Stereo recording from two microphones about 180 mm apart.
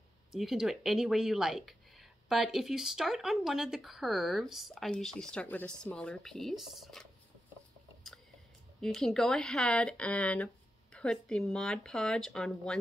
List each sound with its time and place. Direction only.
0.3 s speech: centre (ahead or behind)
8.8 s speech: 5° left (ahead or behind)